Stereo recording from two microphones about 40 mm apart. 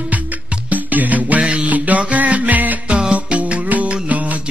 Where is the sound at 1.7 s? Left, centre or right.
Right.